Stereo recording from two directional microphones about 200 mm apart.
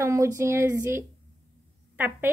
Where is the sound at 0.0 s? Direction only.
15° right (ahead or behind).